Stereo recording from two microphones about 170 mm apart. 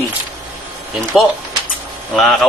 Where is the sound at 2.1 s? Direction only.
Centre (ahead or behind).